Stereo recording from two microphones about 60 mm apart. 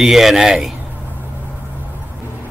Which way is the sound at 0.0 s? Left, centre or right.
Centre.